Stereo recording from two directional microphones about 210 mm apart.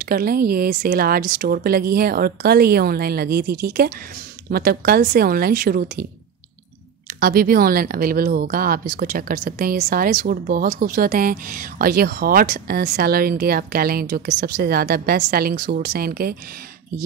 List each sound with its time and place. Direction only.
0.0 s speech: 45° right (ahead or behind)
7.2 s speech: 45° right (ahead or behind)